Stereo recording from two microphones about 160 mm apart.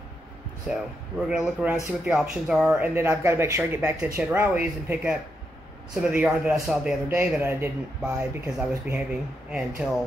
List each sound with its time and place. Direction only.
0.7 s speech: 5° right (ahead or behind)
2.8 s speech: 15° right (ahead or behind)
7.1 s speech: 15° right (ahead or behind)